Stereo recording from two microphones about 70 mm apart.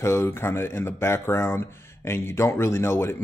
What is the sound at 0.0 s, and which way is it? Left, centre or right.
Speech, left.